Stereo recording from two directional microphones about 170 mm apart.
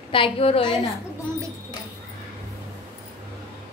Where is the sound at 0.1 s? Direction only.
35° left (ahead or behind).